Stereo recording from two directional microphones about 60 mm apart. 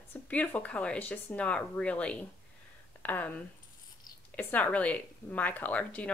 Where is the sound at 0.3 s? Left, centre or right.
Left.